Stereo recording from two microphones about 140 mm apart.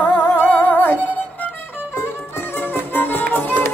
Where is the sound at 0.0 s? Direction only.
15° left (ahead or behind).